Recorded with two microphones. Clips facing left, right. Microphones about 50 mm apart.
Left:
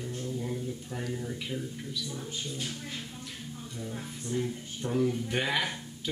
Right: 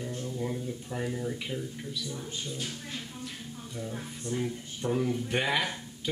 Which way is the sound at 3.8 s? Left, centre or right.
Centre.